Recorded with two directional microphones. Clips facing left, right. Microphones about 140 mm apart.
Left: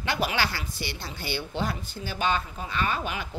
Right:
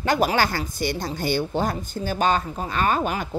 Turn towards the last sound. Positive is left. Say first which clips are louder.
# right 7 dB
turn(degrees=-45)  # may be behind; listen again after turning